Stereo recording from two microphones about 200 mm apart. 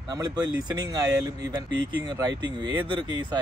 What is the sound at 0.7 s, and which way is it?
Speech, 20° right (ahead or behind).